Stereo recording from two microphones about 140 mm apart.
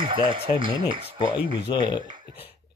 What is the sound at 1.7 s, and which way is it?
Speech, 30° left (ahead or behind).